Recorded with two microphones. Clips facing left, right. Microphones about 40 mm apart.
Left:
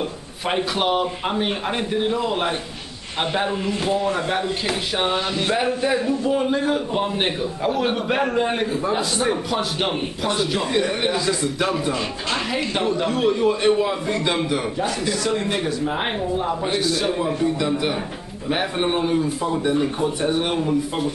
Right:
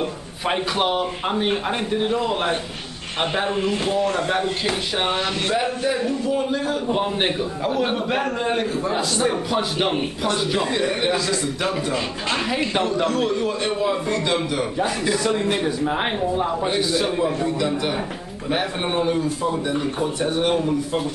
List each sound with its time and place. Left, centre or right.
0.5 s a man's voice: centre
6.2 s a man's voice: left
6.9 s a man's voice: centre
13.0 s a man's voice: centre
15.0 s speech: centre
15.9 s a man's voice: centre